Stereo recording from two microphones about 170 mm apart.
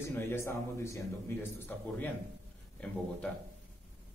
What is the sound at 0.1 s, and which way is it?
Speech, 15° left (ahead or behind).